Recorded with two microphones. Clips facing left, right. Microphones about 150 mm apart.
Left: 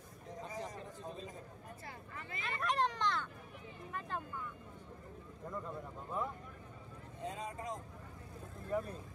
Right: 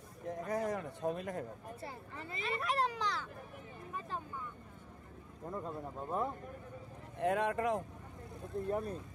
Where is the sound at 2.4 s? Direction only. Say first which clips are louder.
Right 1 dB; 5° right (ahead or behind).